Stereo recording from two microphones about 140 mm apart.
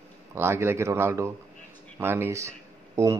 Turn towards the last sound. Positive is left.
turn(degrees=-20)  # may be behind; listen again after turning